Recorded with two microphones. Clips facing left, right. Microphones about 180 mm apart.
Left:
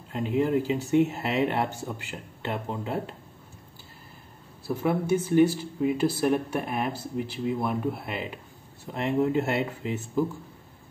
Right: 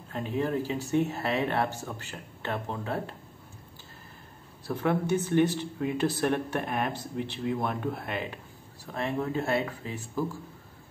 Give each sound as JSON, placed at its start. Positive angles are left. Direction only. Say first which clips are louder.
{"t": 0.1, "sound": "speech", "louder": "left 5 dB", "side_deg": 15}
{"t": 4.6, "sound": "speech", "louder": "left 2 dB", "side_deg": 10}
{"t": 8.9, "sound": "speech", "louder": "left 5 dB", "side_deg": 20}